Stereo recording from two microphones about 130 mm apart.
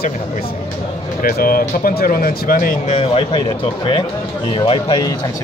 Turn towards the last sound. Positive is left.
turn(degrees=45)  # may be behind; listen again after turning